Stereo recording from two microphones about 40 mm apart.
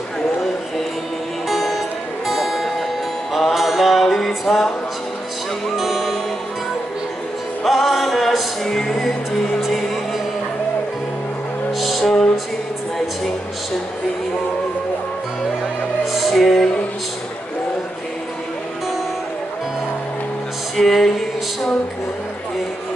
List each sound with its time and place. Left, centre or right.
1.5 s music: centre
5.8 s music: centre
7.6 s music: centre
8.6 s music: centre
12.0 s music: centre
16.3 s music: centre
20.7 s music: centre